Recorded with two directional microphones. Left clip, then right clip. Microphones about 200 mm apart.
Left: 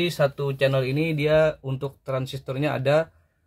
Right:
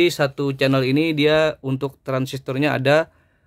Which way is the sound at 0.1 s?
50° right (ahead or behind).